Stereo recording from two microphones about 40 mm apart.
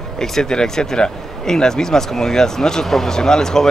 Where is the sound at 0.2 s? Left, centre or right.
Centre.